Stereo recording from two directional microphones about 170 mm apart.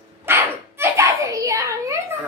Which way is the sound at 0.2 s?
15° right (ahead or behind).